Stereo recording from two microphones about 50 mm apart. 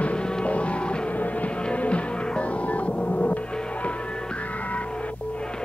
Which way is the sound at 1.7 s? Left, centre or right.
Left.